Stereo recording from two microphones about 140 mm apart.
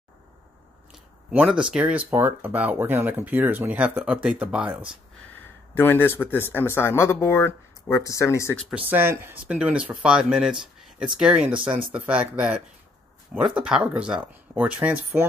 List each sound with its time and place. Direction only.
0.9 s speech: 5° right (ahead or behind)
5.8 s speech: 15° left (ahead or behind)
8.5 s speech: 5° right (ahead or behind)